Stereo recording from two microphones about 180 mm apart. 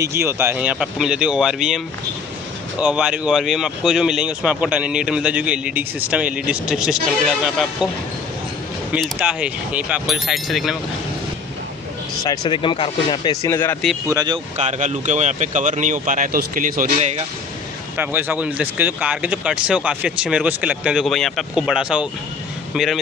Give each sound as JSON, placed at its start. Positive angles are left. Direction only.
{"t": 0.0, "sound": "speech", "side_deg": -15}
{"t": 2.8, "sound": "speech", "side_deg": -5}
{"t": 8.9, "sound": "speech", "side_deg": -5}
{"t": 12.2, "sound": "speech", "side_deg": 25}
{"t": 14.0, "sound": "speech", "side_deg": -20}
{"t": 14.6, "sound": "speech", "side_deg": -40}
{"t": 17.9, "sound": "speech", "side_deg": -10}